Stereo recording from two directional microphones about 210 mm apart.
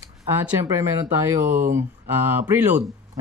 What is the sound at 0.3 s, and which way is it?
Speech, 10° right (ahead or behind).